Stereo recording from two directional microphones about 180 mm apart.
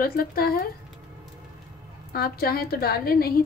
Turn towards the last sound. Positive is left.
turn(degrees=55)  # may be behind; listen again after turning